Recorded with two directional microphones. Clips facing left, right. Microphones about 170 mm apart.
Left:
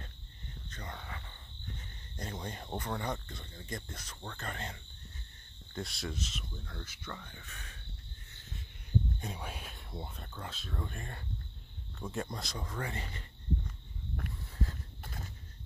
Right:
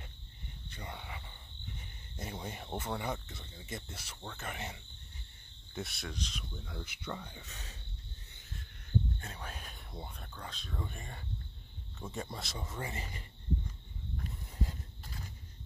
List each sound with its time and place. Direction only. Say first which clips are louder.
0.7 s speech: even; 10° right (ahead or behind)
2.1 s cricket: left 1 dB; 10° right (ahead or behind)
5.8 s speech: left 2 dB; centre (ahead or behind)
6.6 s cricket: right 2 dB; 10° right (ahead or behind)
9.2 s speech: left 4 dB; 10° left (ahead or behind); by 13.2 s 5° right (ahead or behind)